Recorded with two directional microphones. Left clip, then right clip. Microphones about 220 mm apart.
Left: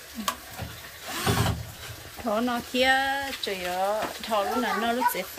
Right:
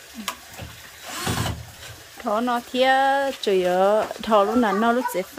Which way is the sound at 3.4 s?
35° right (ahead or behind).